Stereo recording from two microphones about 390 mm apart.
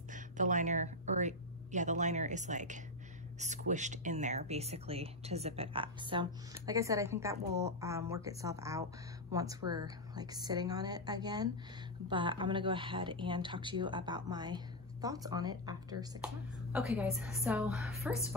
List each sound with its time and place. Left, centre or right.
0.1 s a woman's voice: centre